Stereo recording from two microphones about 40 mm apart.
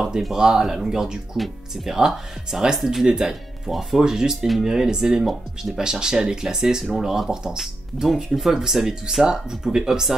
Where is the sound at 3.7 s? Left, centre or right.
Centre.